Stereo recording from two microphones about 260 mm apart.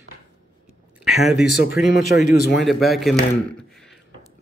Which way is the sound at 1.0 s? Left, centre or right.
Centre.